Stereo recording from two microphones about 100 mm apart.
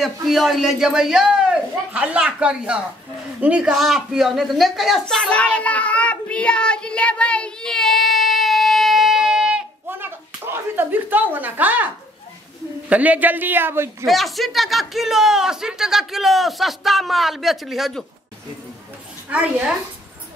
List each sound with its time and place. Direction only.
0.0 s a man's voice: centre (ahead or behind)
5.0 s child singing: 10° left (ahead or behind); by 9.6 s 10° right (ahead or behind)
9.8 s slap: 20° right (ahead or behind)
12.9 s speech: 15° right (ahead or behind)
14.0 s speech: centre (ahead or behind)
19.3 s speech: 15° right (ahead or behind)